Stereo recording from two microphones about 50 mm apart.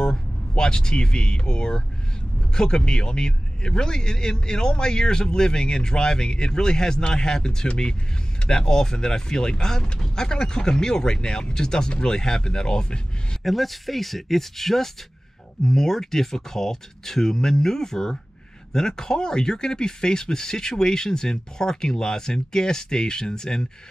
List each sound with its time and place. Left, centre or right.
0.0 s speech: centre
13.4 s speech: centre